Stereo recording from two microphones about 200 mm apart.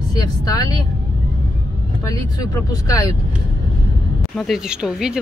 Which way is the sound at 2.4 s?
20° left (ahead or behind).